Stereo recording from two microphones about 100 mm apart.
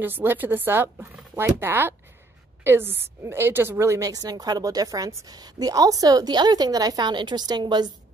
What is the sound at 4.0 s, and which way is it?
A woman's voice, 40° right (ahead or behind).